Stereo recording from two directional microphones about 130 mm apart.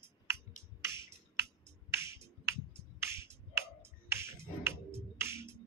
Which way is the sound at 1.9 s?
20° right (ahead or behind).